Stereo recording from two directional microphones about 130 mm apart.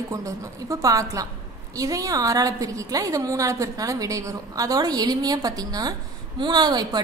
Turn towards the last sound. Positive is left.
turn(degrees=-30)  # may be behind; listen again after turning